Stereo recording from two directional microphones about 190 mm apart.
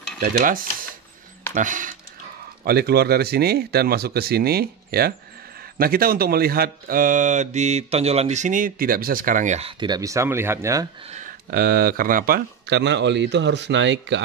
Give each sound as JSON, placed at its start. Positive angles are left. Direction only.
{"t": 0.2, "sound": "speech", "side_deg": -50}
{"t": 2.6, "sound": "speech", "side_deg": -55}
{"t": 11.1, "sound": "speech", "side_deg": -40}